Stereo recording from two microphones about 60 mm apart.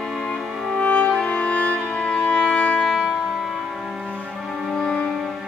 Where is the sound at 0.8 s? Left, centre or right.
Centre.